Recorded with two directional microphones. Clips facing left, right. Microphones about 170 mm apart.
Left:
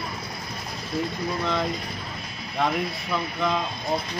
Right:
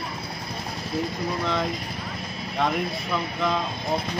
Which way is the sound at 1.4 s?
Centre (ahead or behind).